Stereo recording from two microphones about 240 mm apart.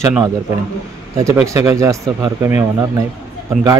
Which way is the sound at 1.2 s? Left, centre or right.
Centre.